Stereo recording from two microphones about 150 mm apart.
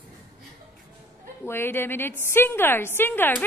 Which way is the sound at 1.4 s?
15° left (ahead or behind).